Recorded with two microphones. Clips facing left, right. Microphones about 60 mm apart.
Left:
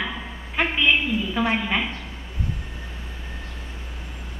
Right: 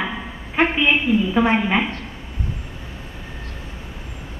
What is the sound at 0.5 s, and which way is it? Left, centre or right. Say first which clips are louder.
A woman's voice: right 3 dB; centre.